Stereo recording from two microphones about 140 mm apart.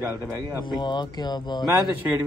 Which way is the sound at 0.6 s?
30° left (ahead or behind).